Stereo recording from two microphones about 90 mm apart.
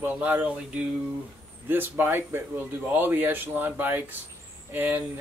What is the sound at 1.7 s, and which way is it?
Speech, 20° right (ahead or behind).